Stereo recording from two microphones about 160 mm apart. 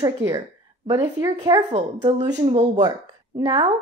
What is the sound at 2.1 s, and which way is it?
Speech, 35° right (ahead or behind).